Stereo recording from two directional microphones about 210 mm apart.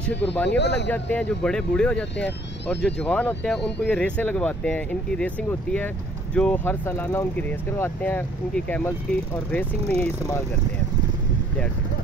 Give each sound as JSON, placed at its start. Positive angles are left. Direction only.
{"t": 0.2, "sound": "speech", "side_deg": 10}
{"t": 0.5, "sound": "speech", "side_deg": 55}
{"t": 0.8, "sound": "speech", "side_deg": 5}